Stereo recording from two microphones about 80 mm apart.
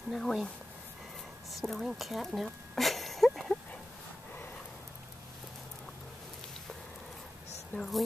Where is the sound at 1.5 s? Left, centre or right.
Centre.